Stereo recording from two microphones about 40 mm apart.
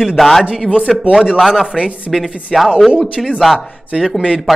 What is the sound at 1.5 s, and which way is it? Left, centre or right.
Speech, centre.